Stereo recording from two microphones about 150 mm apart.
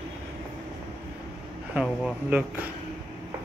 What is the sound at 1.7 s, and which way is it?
Speech, 10° right (ahead or behind).